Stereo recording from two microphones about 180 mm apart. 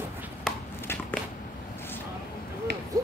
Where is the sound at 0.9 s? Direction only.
15° left (ahead or behind).